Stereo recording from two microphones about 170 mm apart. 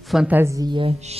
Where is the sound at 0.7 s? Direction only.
30° right (ahead or behind).